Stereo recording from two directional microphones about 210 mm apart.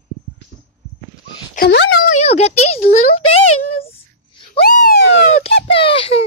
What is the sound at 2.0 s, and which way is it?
Speech, 30° left (ahead or behind).